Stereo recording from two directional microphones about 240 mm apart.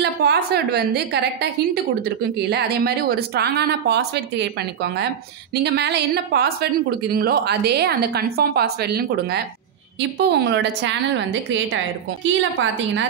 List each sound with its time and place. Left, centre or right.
0.0 s a woman's voice: right